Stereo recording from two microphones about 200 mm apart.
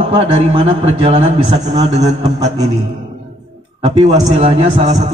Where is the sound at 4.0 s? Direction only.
30° right (ahead or behind).